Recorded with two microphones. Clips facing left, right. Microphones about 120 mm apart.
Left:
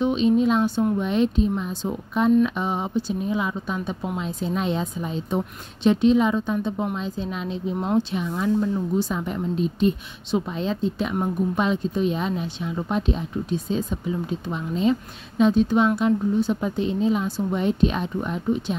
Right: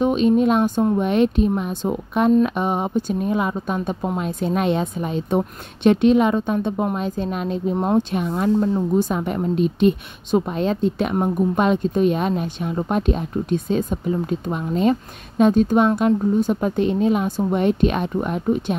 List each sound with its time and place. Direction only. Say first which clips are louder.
0.0 s a woman's voice: right 3 dB; 50° right (ahead or behind)
8.5 s speech: right 4 dB; 40° right (ahead or behind)
9.1 s a woman's voice: right 4 dB; 60° right (ahead or behind)
10.3 s a woman's voice: right 5 dB; 55° right (ahead or behind)